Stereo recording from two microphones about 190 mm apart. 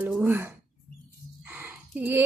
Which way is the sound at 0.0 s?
5° right (ahead or behind).